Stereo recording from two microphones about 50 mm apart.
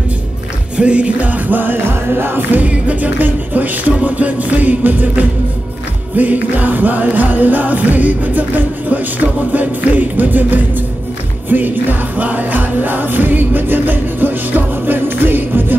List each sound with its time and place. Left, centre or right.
0.7 s music: right